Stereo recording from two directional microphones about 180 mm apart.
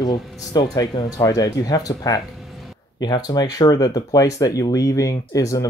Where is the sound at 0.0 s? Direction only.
20° left (ahead or behind).